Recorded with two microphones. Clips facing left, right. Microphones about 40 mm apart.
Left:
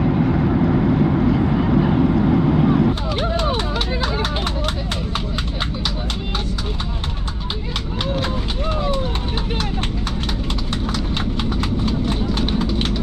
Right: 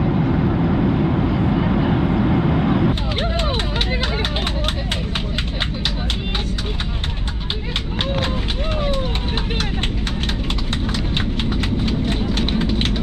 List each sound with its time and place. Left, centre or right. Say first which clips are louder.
0.0 s vehicle: left 1 dB; centre
2.9 s a sound: left 1 dB; right
8.7 s run: even; right
11.8 s clip-clop: even; right
12.4 s vehicle: even; right